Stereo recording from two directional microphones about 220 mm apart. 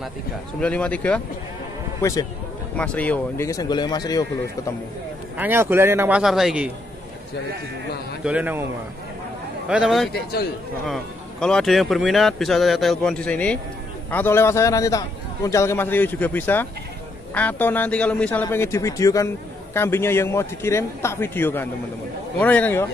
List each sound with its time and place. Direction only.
0.6 s a man's voice: 5° left (ahead or behind)
5.4 s speech: 10° right (ahead or behind)
8.2 s speech: 5° right (ahead or behind)
9.7 s a man's voice: centre (ahead or behind)